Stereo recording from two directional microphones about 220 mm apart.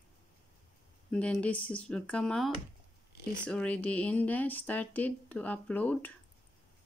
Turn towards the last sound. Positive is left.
turn(degrees=5)  # may be behind; listen again after turning